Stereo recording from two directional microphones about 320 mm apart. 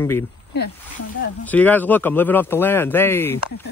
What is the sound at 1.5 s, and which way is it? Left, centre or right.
Speech, centre.